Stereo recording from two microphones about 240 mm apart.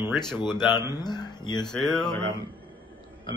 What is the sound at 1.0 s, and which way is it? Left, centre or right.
Speech, centre.